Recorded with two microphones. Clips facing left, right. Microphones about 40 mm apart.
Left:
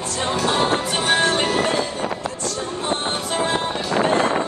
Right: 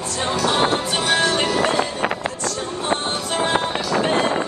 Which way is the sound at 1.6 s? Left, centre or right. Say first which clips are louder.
Right 2 dB; right.